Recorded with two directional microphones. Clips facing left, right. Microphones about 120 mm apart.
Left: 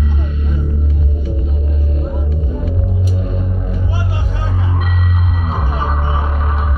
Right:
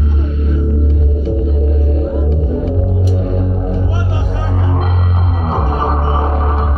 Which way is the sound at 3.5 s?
25° right (ahead or behind).